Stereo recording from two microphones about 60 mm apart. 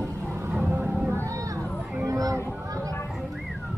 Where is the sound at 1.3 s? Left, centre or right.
Right.